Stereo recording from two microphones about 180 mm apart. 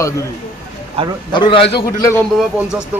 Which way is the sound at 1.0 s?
30° right (ahead or behind).